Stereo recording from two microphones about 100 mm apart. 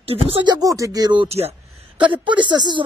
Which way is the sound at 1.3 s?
90° right.